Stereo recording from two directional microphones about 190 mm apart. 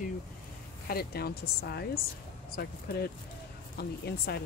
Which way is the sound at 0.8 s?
55° left (ahead or behind).